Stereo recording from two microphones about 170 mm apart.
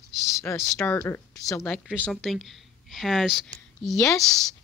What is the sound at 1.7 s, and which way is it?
Speech, 5° right (ahead or behind).